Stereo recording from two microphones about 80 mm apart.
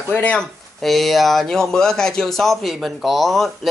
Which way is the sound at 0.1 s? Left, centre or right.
Centre.